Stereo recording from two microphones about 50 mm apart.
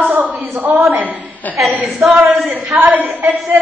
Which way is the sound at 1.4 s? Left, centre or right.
Left.